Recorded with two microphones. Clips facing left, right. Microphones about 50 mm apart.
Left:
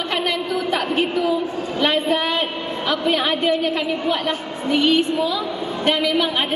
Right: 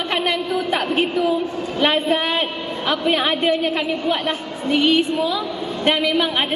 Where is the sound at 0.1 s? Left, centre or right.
Centre.